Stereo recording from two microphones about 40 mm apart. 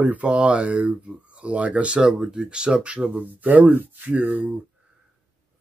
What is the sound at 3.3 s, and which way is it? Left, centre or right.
Speech, right.